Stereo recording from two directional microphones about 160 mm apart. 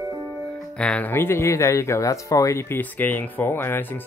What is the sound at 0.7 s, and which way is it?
Speech, 5° left (ahead or behind).